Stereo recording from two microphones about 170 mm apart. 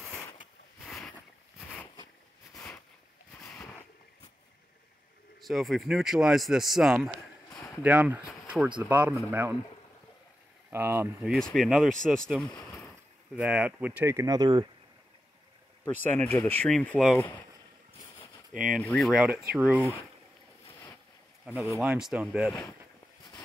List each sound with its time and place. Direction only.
0.8 s boat: centre (ahead or behind)
2.5 s a sound: 5° left (ahead or behind)
3.5 s boat: 5° left (ahead or behind)
5.4 s a man's voice: centre (ahead or behind)
10.7 s speech: 15° right (ahead or behind)
11.3 s speech: centre (ahead or behind)
12.0 s boat: 5° left (ahead or behind)
13.4 s speech: 5° right (ahead or behind); by 14.7 s 25° right (ahead or behind)
15.8 s speech: 10° left (ahead or behind)
18.8 s speech: 5° left (ahead or behind)
21.5 s speech: centre (ahead or behind)